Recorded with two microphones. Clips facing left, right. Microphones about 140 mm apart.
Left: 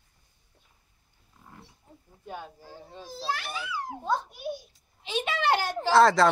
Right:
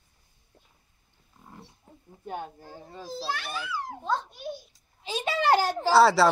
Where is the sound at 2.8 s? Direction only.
45° right (ahead or behind).